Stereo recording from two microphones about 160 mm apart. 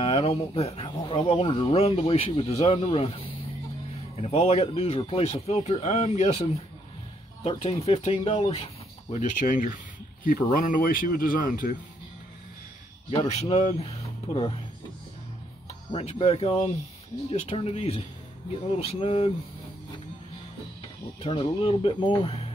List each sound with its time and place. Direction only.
0.0 s speech: 35° left (ahead or behind)
7.4 s speech: 40° left (ahead or behind)
9.1 s speech: 50° left (ahead or behind)
13.1 s speech: 35° left (ahead or behind)
15.9 s speech: 40° left (ahead or behind)
21.2 s speech: 35° left (ahead or behind)